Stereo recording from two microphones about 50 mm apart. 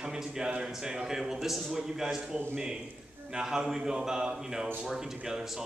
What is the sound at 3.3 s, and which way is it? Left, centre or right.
A man's voice, centre.